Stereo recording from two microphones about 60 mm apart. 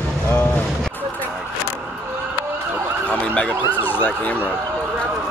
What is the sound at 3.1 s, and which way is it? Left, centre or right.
Emergency vehicle, left.